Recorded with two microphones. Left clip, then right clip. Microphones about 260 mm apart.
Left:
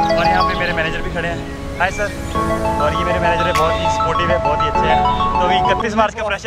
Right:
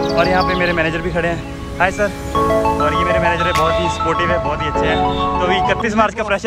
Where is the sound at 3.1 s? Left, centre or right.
Centre.